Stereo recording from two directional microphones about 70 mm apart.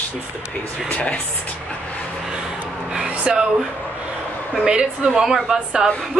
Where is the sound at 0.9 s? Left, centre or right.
Centre.